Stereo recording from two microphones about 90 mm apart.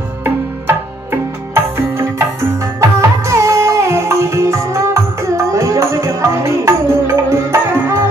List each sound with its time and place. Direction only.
0.2 s music: 25° right (ahead or behind)